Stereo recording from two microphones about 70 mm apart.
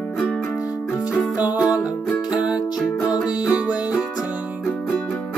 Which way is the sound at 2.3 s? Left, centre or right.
Centre.